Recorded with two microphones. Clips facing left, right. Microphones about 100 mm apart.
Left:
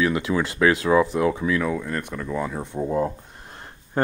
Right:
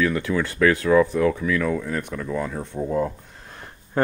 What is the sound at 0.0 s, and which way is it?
Speech, 15° left (ahead or behind).